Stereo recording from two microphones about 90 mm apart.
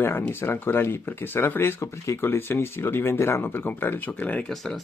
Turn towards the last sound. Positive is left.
turn(degrees=15)  # may be behind; listen again after turning